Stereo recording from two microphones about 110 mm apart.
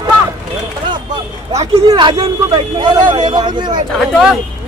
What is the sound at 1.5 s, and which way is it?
Speech, 75° right (ahead or behind).